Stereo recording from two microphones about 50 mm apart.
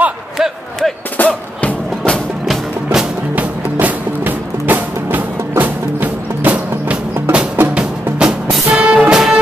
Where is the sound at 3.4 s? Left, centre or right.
Right.